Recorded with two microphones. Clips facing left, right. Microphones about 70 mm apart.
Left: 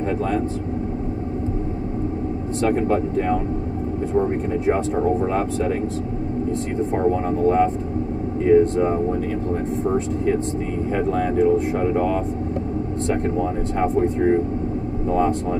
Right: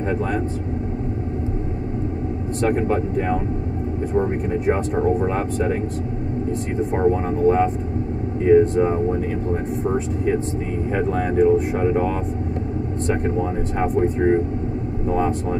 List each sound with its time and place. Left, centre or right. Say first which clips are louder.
2.6 s speech: left 1 dB; centre
6.9 s speech: right 1 dB; centre